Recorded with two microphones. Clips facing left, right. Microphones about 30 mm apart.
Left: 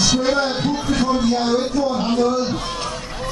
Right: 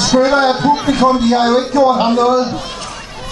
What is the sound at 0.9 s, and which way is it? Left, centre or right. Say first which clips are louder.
A man's voice: right 4 dB; right.